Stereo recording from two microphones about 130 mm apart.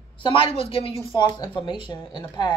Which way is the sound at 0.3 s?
45° left (ahead or behind).